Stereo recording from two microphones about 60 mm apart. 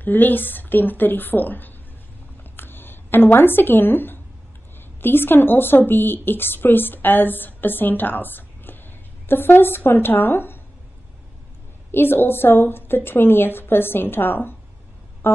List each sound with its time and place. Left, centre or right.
0.0 s a woman's voice: left
2.5 s a sound: left
5.0 s a woman's voice: left
11.9 s a woman's voice: left
15.2 s music: left